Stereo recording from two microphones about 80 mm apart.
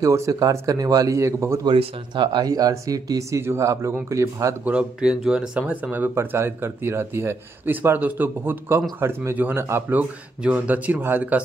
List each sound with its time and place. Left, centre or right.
0.0 s a man's voice: right
1.7 s a man's voice: right
2.4 s speech: right
4.6 s speech: centre
6.1 s speech: right
9.9 s speech: centre